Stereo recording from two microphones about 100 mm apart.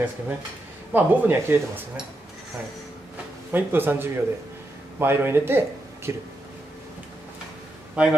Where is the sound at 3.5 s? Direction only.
20° right (ahead or behind).